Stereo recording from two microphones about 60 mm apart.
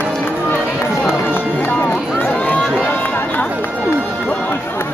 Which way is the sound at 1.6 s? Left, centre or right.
Left.